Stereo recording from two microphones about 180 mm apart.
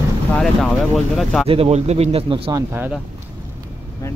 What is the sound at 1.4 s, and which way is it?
Speech, 35° right (ahead or behind).